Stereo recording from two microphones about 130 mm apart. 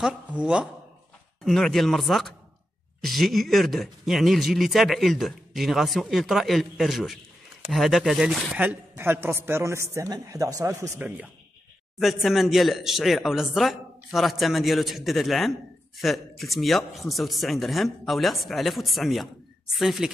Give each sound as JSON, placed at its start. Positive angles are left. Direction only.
{"t": 0.0, "sound": "speech", "side_deg": -5}
{"t": 8.5, "sound": "a man's voice", "side_deg": -15}
{"t": 11.0, "sound": "speech", "side_deg": -10}
{"t": 12.0, "sound": "speech", "side_deg": 0}